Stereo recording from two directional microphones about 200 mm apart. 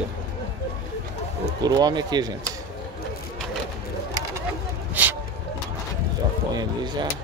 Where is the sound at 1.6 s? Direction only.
20° right (ahead or behind).